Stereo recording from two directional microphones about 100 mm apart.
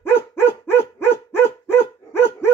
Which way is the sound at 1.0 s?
20° left (ahead or behind).